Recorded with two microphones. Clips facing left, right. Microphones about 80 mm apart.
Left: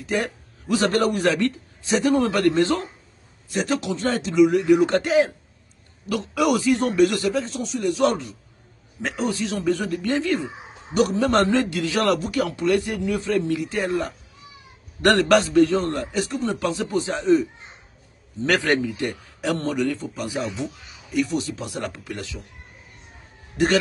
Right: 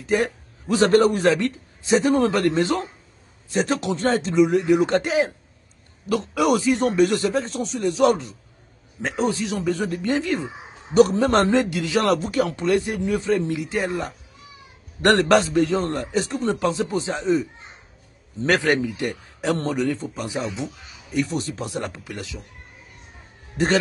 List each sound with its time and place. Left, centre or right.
0.0 s a man's voice: right
3.4 s a man's voice: right
8.0 s a man's voice: centre
9.0 s a man's voice: right
9.5 s a man's voice: centre
11.0 s a man's voice: right; by 12.1 s centre
12.1 s a man's voice: right
18.6 s speech: centre
19.4 s a man's voice: right
21.7 s a man's voice: right
22.0 s speech: centre